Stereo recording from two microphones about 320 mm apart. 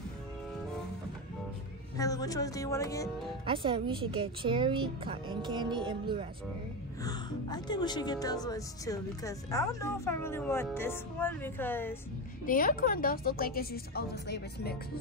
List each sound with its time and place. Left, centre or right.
2.0 s speech: centre
3.4 s a woman's voice: centre
7.0 s speech: centre
12.4 s a woman's voice: left